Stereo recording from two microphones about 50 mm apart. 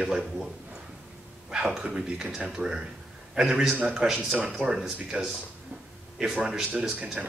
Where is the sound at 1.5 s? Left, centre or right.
Right.